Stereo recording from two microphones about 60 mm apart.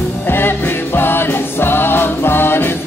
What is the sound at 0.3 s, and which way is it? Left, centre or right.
Music, left.